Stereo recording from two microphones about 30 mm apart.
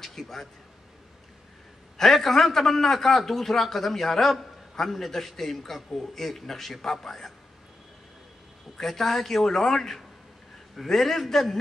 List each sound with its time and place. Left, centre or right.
0.2 s a man's voice: centre
2.0 s a man's voice: centre
8.7 s a man's voice: centre